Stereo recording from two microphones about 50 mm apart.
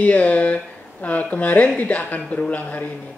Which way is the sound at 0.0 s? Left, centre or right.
Left.